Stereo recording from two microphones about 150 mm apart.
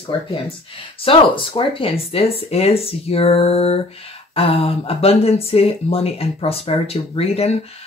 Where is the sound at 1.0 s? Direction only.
35° left (ahead or behind).